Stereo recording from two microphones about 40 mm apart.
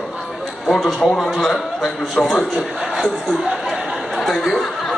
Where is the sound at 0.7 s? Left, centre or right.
Centre.